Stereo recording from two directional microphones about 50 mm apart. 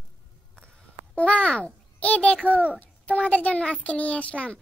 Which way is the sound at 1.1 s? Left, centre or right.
Left.